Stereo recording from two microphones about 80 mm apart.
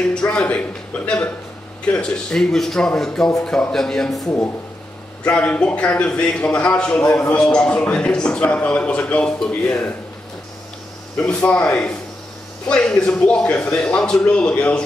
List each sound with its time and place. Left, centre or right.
0.0 s a man's voice: centre
11.1 s a man's voice: centre